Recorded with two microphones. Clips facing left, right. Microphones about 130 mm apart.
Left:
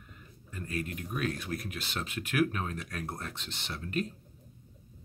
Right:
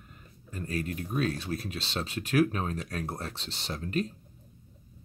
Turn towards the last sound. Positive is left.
turn(degrees=-35)  # may be behind; listen again after turning